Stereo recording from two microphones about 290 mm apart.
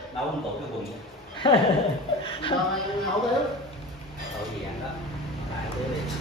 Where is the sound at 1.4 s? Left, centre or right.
Centre.